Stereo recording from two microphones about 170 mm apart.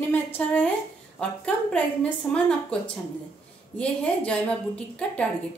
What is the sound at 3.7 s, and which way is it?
Speech, 5° left (ahead or behind).